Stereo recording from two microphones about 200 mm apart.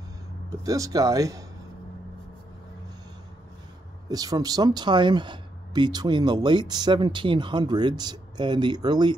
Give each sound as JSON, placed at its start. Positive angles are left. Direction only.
{"t": 0.5, "sound": "speech", "side_deg": -15}
{"t": 4.1, "sound": "speech", "side_deg": -20}